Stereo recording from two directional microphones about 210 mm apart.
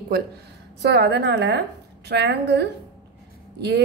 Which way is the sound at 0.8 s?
55° right (ahead or behind).